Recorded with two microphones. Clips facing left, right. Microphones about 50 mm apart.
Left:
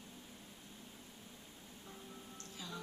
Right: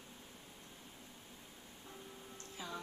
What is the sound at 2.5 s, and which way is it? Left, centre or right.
Music, right.